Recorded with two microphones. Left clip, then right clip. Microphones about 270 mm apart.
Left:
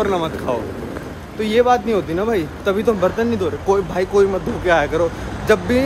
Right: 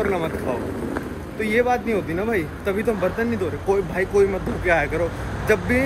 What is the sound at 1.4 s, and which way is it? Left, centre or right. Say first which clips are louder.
Speech: left 5 dB; centre.